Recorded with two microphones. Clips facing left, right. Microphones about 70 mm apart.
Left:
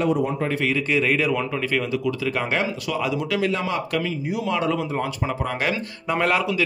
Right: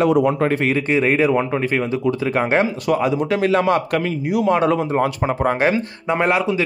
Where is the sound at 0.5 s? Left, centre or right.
Right.